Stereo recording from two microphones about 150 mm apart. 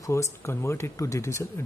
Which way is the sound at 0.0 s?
20° left (ahead or behind).